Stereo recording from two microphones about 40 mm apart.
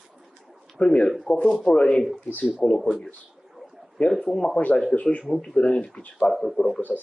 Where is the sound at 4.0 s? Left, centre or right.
Left.